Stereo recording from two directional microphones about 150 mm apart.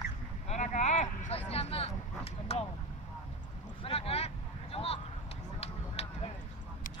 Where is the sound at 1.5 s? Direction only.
40° left (ahead or behind).